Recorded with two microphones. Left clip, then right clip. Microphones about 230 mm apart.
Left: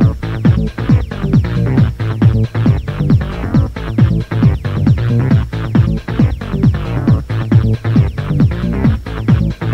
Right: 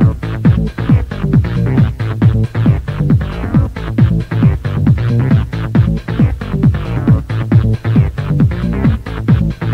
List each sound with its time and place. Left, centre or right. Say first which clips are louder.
0.0 s music: even; left